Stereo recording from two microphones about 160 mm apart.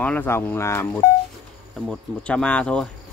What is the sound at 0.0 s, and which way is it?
Speech, 10° left (ahead or behind).